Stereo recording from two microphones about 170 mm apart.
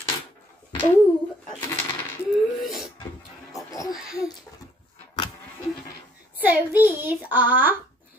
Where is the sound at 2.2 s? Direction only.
Centre (ahead or behind).